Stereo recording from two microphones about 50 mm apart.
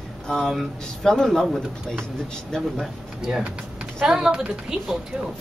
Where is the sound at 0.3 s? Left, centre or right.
Centre.